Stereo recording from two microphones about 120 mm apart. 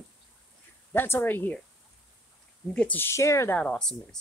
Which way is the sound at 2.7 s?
10° left (ahead or behind).